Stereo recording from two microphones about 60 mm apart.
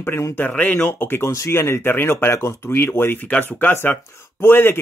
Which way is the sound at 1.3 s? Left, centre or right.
Left.